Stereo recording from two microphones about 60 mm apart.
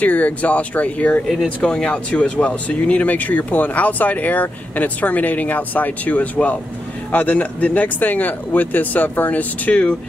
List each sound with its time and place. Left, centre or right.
0.0 s speech: left
1.2 s speech: centre
1.6 s speech: centre